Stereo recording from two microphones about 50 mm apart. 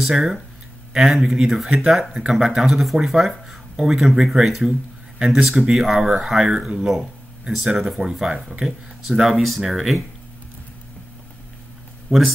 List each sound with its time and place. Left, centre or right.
0.0 s speech: centre
8.0 s speech: centre
9.4 s speech: centre
12.1 s speech: centre